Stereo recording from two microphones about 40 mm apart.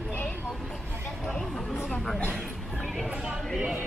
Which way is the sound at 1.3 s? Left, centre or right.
Centre.